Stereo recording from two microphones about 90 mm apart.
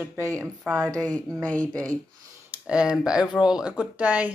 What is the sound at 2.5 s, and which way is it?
Speech, 10° right (ahead or behind).